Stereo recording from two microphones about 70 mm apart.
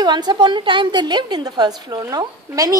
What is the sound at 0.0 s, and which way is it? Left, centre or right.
A woman's voice, right.